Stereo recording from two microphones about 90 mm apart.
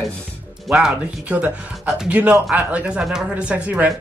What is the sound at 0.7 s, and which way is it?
Speech, 10° right (ahead or behind).